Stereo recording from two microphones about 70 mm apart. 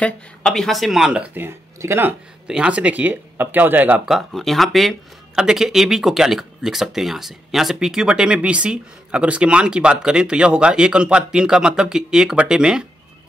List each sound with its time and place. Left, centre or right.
0.0 s speech: centre
1.8 s speech: right
2.4 s speech: centre
4.0 s speech: centre